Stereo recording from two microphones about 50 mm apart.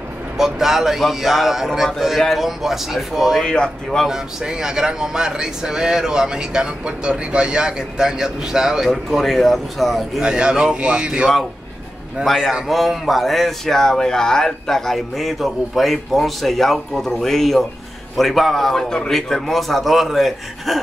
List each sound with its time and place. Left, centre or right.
0.4 s speech: centre
3.4 s speech: centre
4.1 s speech: centre
8.9 s speech: centre
10.2 s speech: centre
12.6 s speech: centre